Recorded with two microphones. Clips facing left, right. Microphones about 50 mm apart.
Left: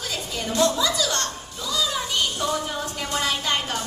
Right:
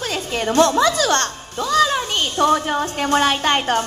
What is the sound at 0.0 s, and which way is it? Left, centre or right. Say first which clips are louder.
A woman's voice: right 7 dB; right.